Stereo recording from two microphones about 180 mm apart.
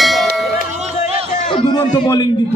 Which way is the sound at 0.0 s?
Centre (ahead or behind).